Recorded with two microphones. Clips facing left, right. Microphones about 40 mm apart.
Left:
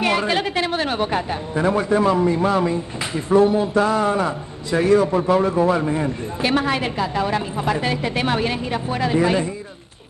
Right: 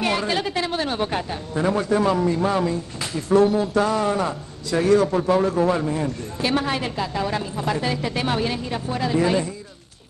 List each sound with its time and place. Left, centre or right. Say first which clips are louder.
0.0 s a man's voice: left 3 dB; left